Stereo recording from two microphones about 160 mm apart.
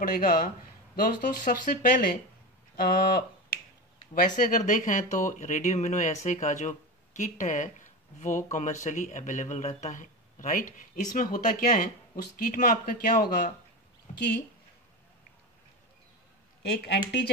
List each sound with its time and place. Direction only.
0.1 s speech: 65° left (ahead or behind)
2.7 s speech: 70° left (ahead or behind)
4.1 s a man's voice: 60° left (ahead or behind)
14.1 s a sound: 45° left (ahead or behind)
16.8 s speech: 85° left